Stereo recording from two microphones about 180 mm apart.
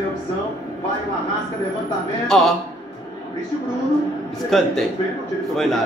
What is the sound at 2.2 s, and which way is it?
Speech, centre (ahead or behind).